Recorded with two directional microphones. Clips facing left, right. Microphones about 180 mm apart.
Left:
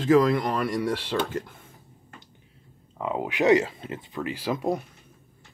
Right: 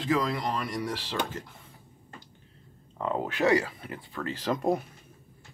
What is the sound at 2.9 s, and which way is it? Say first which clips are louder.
Speech: left 2 dB; 10° left (ahead or behind).